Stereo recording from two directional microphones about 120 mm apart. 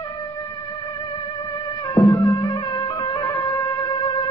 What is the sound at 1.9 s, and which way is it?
Music, 25° left (ahead or behind).